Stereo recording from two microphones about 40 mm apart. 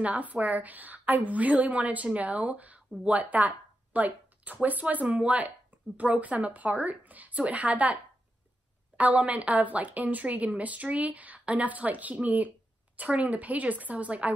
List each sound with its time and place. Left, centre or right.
0.0 s a woman's voice: right